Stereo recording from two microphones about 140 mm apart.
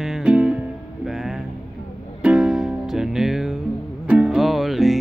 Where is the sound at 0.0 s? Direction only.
5° right (ahead or behind).